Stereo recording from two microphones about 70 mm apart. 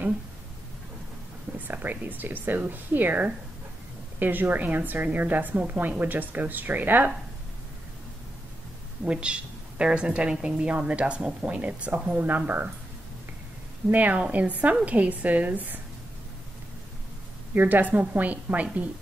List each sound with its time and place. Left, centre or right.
1.7 s a woman's voice: right
9.0 s a woman's voice: centre
13.8 s a woman's voice: right
17.6 s a woman's voice: right